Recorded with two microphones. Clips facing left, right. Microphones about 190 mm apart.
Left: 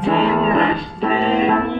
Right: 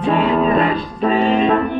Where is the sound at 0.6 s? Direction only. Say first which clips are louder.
Right 1 dB; 25° left (ahead or behind).